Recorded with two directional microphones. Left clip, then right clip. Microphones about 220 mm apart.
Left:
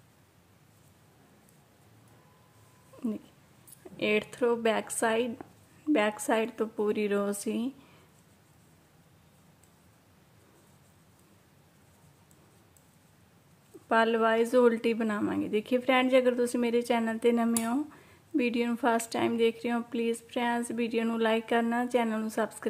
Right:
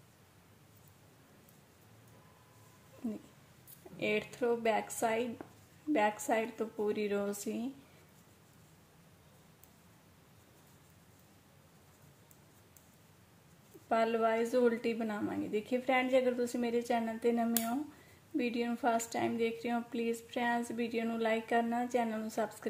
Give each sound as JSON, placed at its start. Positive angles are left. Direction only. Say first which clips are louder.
{"t": 3.9, "sound": "speech", "louder": "left 6 dB", "side_deg": 25}
{"t": 13.8, "sound": "speech", "louder": "left 6 dB", "side_deg": 25}